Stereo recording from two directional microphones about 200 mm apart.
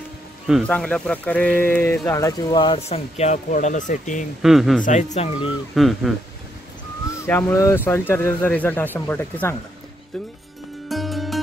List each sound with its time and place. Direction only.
0.5 s speech: centre (ahead or behind); by 4.3 s 40° left (ahead or behind)
4.4 s speech: centre (ahead or behind)
4.8 s speech: 35° left (ahead or behind)
5.8 s speech: centre (ahead or behind)
7.2 s speech: 10° left (ahead or behind)
10.9 s music: centre (ahead or behind)